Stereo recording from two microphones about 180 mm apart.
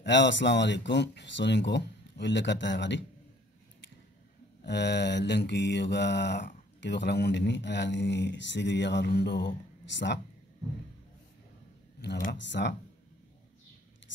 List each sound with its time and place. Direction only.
0.0 s speech: 80° left
4.6 s speech: 70° left (ahead or behind)
12.2 s speech: 75° left (ahead or behind)